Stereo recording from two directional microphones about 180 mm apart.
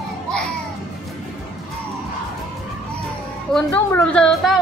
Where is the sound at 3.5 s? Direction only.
5° left (ahead or behind).